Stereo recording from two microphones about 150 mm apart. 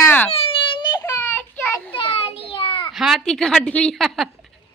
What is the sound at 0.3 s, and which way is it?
Baby cry, 40° left (ahead or behind).